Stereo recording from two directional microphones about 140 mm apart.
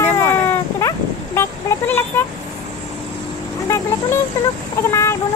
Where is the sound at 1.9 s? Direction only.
15° left (ahead or behind).